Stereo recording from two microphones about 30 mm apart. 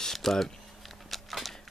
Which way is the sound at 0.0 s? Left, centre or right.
Centre.